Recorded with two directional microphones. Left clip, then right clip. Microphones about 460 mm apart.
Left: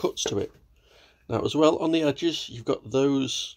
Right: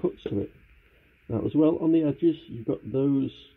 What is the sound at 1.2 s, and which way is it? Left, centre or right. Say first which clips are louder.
Speech: left 2 dB; centre.